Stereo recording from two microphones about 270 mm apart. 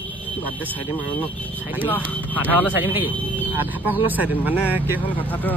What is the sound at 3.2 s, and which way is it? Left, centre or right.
Vehicle, centre.